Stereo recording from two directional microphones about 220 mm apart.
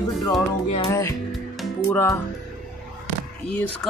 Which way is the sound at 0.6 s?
25° left (ahead or behind).